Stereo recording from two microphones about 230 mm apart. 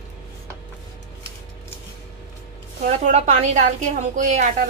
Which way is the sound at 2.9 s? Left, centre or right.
Right.